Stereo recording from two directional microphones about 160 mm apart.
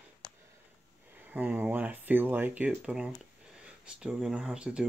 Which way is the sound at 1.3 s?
10° right (ahead or behind).